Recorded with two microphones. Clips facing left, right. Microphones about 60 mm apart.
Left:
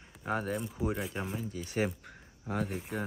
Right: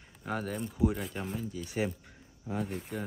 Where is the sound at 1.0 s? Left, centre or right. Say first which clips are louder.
Left 1 dB; centre.